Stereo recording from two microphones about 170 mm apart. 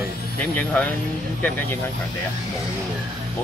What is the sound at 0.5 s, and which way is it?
Speech, 10° left (ahead or behind).